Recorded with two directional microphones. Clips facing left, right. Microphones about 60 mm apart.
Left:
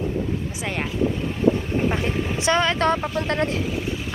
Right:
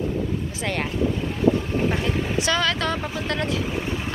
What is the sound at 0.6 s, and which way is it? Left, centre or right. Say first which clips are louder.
Speech: right 4 dB; centre.